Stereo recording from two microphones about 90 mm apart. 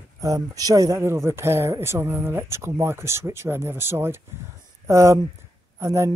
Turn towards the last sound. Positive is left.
turn(degrees=-30)  # may be behind; listen again after turning